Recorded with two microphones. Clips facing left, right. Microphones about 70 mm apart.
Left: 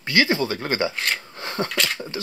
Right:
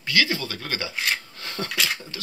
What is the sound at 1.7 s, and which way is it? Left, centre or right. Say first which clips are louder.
Speech: left 1 dB; centre.